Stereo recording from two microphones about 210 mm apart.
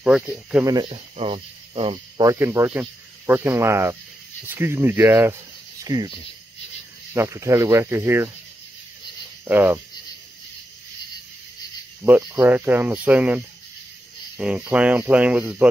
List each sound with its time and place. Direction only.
0.0 s speech: 5° right (ahead or behind)
0.7 s speech: 25° right (ahead or behind)
7.2 s speech: 15° right (ahead or behind)
9.4 s speech: 10° right (ahead or behind)
12.0 s speech: 10° right (ahead or behind)